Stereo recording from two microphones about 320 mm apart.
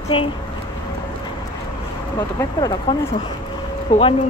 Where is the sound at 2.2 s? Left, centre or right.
Centre.